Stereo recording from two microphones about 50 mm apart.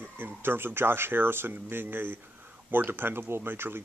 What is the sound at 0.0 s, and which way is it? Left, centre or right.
Speech, right.